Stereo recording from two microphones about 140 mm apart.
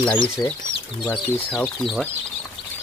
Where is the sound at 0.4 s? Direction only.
30° left (ahead or behind).